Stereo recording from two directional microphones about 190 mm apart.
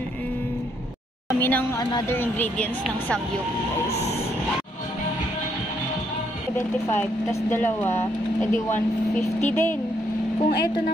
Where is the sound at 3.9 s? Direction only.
35° left (ahead or behind).